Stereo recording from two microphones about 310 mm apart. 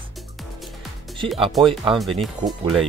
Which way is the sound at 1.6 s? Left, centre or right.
Centre.